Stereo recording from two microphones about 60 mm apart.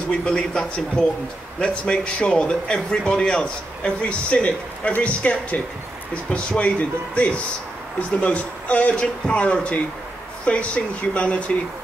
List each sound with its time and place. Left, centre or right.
0.1 s speech: centre